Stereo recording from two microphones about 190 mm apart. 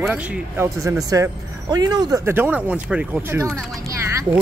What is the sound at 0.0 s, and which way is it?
Speech, 10° right (ahead or behind).